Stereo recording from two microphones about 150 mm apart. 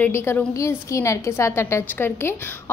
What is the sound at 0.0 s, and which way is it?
A woman's voice, 15° left (ahead or behind).